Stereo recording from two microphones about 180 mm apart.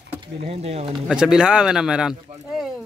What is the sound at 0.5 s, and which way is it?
Speech, 35° right (ahead or behind).